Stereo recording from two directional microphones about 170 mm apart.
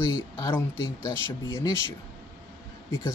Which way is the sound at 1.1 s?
15° left (ahead or behind).